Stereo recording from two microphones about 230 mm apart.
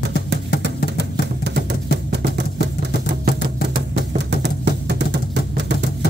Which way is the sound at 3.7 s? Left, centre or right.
Right.